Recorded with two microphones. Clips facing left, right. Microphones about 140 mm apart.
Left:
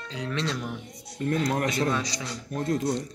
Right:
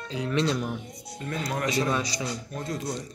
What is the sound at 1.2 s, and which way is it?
Speech, 50° left (ahead or behind).